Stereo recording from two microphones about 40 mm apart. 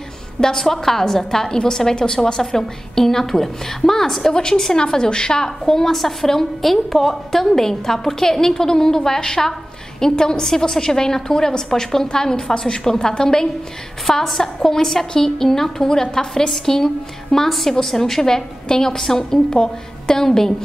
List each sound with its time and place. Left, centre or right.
0.4 s a woman's voice: centre
14.0 s a woman's voice: centre